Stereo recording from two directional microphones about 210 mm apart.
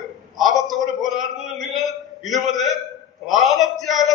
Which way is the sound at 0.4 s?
Centre (ahead or behind).